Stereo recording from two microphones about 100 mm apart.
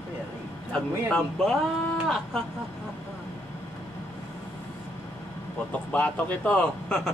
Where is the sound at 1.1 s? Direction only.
5° left (ahead or behind).